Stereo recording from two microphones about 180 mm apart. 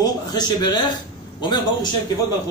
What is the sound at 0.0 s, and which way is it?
A man's voice, 20° left (ahead or behind).